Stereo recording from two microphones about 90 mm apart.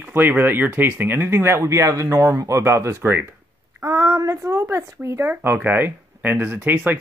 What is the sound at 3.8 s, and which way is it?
Speech, 35° right (ahead or behind).